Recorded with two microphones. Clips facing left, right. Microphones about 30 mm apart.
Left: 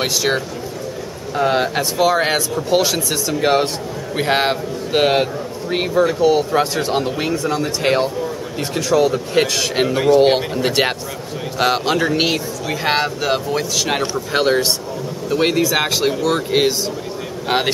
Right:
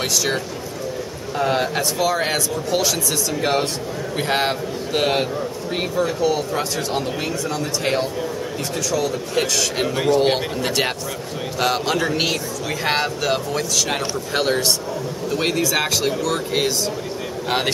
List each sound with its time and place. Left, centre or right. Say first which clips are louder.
0.0 s a man's voice: left 3 dB; centre
9.8 s a man's voice: left 5 dB; centre